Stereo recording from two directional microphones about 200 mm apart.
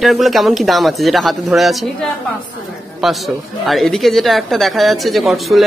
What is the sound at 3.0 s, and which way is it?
Speech, centre (ahead or behind).